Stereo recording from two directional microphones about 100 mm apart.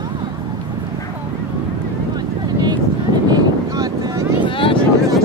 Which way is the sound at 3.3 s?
40° right (ahead or behind).